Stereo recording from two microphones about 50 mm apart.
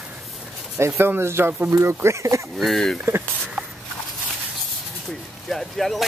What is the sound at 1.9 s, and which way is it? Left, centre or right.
Speech, right.